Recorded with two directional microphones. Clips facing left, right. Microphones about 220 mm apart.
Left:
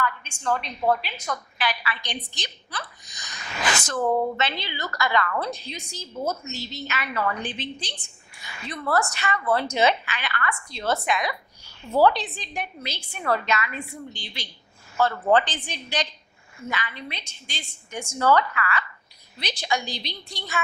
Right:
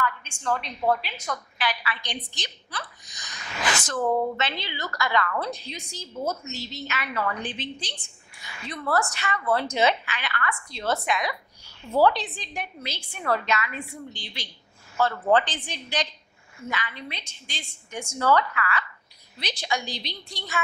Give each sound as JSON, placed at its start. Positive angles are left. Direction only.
{"t": 0.0, "sound": "a woman's voice", "side_deg": 15}
{"t": 8.7, "sound": "a woman's voice", "side_deg": 25}
{"t": 9.5, "sound": "a woman's voice", "side_deg": 15}
{"t": 15.1, "sound": "a woman's voice", "side_deg": 25}
{"t": 15.4, "sound": "a woman's voice", "side_deg": 10}